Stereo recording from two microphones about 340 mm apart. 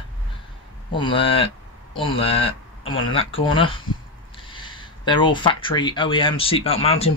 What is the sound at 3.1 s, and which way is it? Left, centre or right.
Speech, centre.